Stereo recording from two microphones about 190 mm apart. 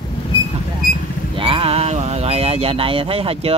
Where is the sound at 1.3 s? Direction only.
25° right (ahead or behind).